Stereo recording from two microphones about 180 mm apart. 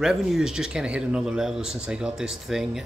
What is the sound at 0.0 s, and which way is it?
Speech, centre (ahead or behind).